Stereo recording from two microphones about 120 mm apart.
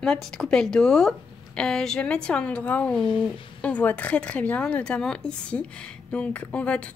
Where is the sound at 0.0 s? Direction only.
5° left (ahead or behind).